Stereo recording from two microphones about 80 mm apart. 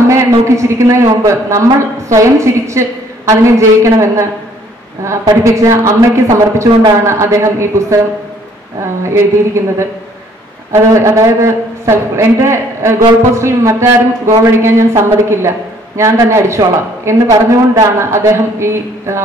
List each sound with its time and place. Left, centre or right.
0.1 s a man's voice: right
9.1 s a man's voice: right